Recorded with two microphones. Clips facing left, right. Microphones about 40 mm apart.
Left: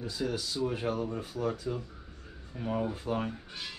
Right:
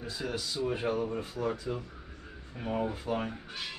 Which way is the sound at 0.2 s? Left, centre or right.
Centre.